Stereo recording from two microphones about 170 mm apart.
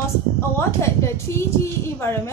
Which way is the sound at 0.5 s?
15° left (ahead or behind).